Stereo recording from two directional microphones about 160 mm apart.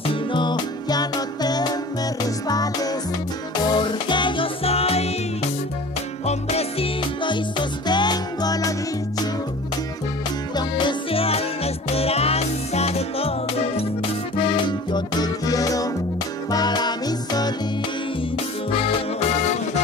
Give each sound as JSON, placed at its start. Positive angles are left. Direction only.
{"t": 0.0, "sound": "music", "side_deg": 30}
{"t": 6.2, "sound": "music", "side_deg": 40}
{"t": 10.5, "sound": "music", "side_deg": 30}
{"t": 18.7, "sound": "music", "side_deg": 40}